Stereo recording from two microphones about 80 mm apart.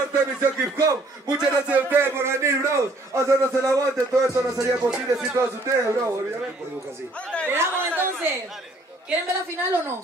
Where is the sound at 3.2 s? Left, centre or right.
Right.